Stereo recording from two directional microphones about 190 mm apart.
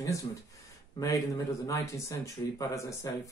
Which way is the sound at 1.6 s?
15° left (ahead or behind).